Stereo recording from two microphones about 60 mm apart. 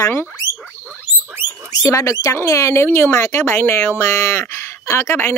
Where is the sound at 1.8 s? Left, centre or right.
Left.